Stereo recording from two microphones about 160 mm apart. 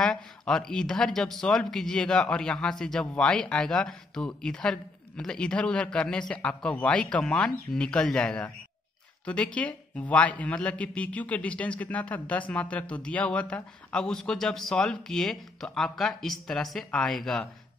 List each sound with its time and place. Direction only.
0.0 s a man's voice: 5° left (ahead or behind)